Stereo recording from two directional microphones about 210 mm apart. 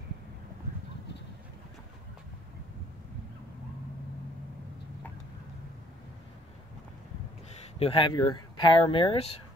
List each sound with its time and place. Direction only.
7.8 s speech: 25° left (ahead or behind)